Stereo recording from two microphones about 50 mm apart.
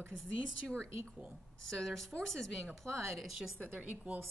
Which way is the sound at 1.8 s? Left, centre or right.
Centre.